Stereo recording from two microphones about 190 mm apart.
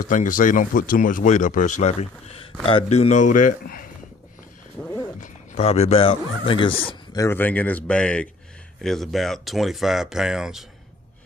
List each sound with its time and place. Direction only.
0.0 s speech: 45° left (ahead or behind)
5.2 s speech: 35° left (ahead or behind); by 10.6 s centre (ahead or behind)